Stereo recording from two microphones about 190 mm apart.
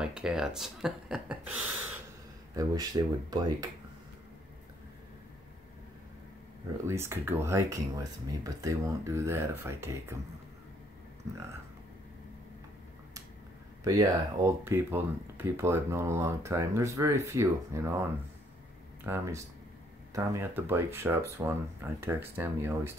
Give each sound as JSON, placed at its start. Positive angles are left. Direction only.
{"t": 0.0, "sound": "speech", "side_deg": -5}
{"t": 2.5, "sound": "speech", "side_deg": -20}
{"t": 6.9, "sound": "speech", "side_deg": -15}
{"t": 13.8, "sound": "speech", "side_deg": -15}
{"t": 19.0, "sound": "speech", "side_deg": -15}